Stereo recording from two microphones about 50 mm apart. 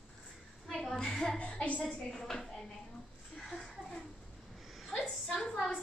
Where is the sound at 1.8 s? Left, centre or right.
Centre.